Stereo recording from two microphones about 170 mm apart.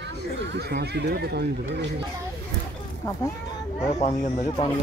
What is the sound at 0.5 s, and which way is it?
Speech, 75° right (ahead or behind).